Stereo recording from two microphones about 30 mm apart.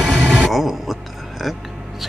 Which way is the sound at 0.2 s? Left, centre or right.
Left.